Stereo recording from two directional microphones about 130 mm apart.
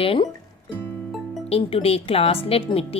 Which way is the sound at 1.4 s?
45° left (ahead or behind).